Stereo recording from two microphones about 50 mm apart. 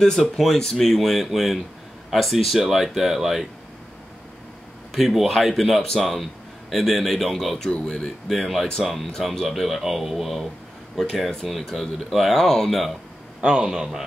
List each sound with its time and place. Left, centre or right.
0.2 s speech: centre
4.9 s speech: centre
8.4 s speech: centre
13.4 s a man's voice: centre